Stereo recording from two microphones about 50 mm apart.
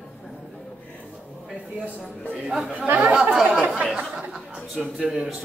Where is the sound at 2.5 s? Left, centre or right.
Centre.